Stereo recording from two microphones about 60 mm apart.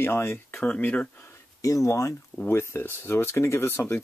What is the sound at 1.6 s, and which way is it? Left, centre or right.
Speech, left.